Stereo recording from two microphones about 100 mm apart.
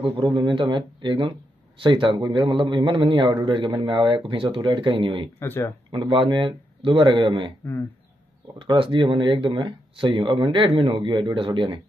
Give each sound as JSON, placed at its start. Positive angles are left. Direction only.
{"t": 0.0, "sound": "a man's voice", "side_deg": -55}
{"t": 5.4, "sound": "speech", "side_deg": 20}
{"t": 5.9, "sound": "a man's voice", "side_deg": -55}
{"t": 8.5, "sound": "speech", "side_deg": -60}